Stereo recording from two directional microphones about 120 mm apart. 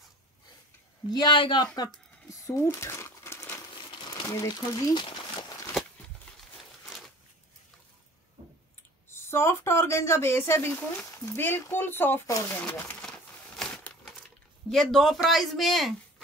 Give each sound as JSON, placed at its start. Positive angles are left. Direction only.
{"t": 1.1, "sound": "speech", "side_deg": 40}
{"t": 2.2, "sound": "crumpling", "side_deg": 25}
{"t": 4.1, "sound": "speech", "side_deg": 30}
{"t": 6.3, "sound": "a sound", "side_deg": 10}
{"t": 9.1, "sound": "speech", "side_deg": 20}
{"t": 13.6, "sound": "crumpling", "side_deg": 10}
{"t": 14.7, "sound": "speech", "side_deg": 5}